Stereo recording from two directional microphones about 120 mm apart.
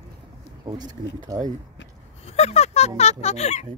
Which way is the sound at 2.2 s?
65° left (ahead or behind).